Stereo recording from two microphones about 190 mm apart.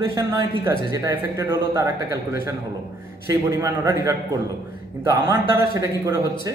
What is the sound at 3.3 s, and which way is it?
A man's voice, 15° right (ahead or behind).